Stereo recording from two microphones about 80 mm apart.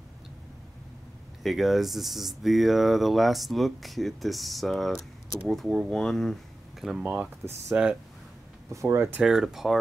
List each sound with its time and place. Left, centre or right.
1.4 s speech: centre
7.0 s speech: centre
8.7 s speech: right
9.2 s speech: centre